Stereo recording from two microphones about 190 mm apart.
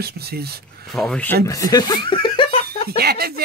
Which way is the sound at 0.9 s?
5° left (ahead or behind).